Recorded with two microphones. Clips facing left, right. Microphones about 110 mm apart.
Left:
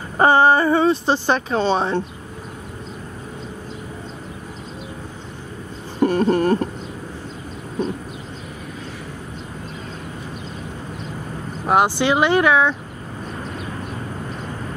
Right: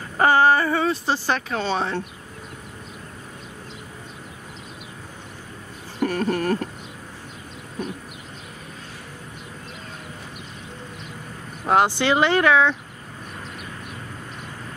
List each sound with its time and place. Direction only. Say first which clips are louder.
0.2 s a woman's voice: left 3 dB; 25° left (ahead or behind)
5.9 s a sound: left 6 dB; 25° left (ahead or behind)
11.6 s speech: left 2 dB; 15° left (ahead or behind)